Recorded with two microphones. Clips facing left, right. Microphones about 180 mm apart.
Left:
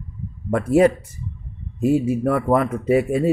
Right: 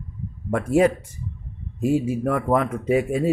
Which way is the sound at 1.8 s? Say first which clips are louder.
Left 3 dB; 45° left (ahead or behind).